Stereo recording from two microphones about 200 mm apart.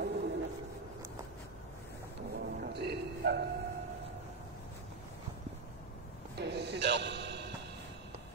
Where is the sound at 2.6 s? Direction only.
55° right (ahead or behind).